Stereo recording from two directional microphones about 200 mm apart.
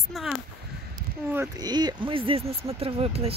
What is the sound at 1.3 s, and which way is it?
Speech, 15° right (ahead or behind).